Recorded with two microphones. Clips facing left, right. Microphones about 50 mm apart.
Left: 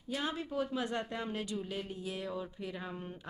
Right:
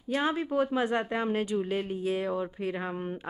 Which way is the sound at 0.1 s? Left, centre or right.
Right.